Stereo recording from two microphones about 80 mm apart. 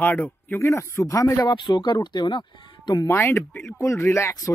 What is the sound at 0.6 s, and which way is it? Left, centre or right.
Speech, left.